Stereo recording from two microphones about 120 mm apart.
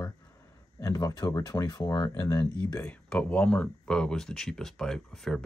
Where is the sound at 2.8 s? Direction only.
10° left (ahead or behind).